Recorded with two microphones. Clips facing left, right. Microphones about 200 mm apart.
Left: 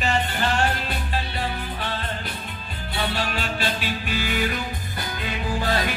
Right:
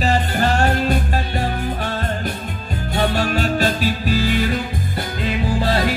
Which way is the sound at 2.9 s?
45° right (ahead or behind).